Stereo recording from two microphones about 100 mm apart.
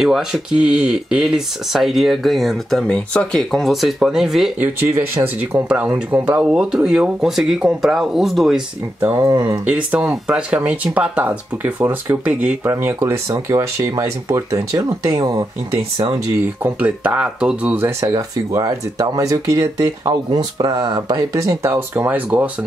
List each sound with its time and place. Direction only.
0.0 s speech: 5° right (ahead or behind); by 3.4 s 10° left (ahead or behind)
3.5 s speech: centre (ahead or behind)
4.6 s speech: 25° right (ahead or behind); by 8.6 s 5° right (ahead or behind)
9.0 s speech: 25° right (ahead or behind)
9.3 s speech: 40° right (ahead or behind)
9.7 s speech: 15° right (ahead or behind)
12.7 s speech: 25° right (ahead or behind)
16.6 s speech: 15° right (ahead or behind)
17.8 s speech: 35° right (ahead or behind); by 22.5 s 15° right (ahead or behind)